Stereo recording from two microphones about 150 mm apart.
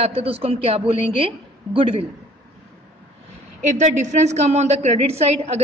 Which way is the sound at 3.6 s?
50° right (ahead or behind).